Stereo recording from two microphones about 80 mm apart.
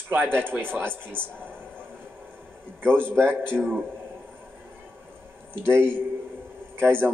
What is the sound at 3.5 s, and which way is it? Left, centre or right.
Speech, centre.